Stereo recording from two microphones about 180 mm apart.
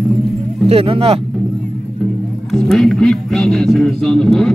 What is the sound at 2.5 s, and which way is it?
A man's voice, centre (ahead or behind).